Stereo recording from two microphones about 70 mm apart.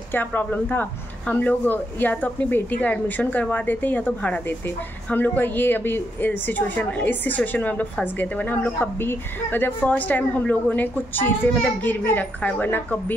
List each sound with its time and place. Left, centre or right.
0.1 s speech: left